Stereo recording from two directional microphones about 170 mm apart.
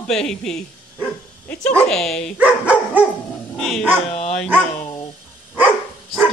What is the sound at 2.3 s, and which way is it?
Speech, 5° right (ahead or behind).